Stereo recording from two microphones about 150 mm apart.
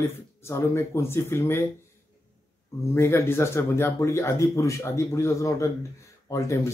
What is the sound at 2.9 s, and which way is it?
Speech, 15° left (ahead or behind).